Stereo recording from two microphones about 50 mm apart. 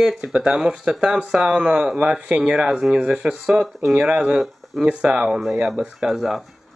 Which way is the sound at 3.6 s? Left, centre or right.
Centre.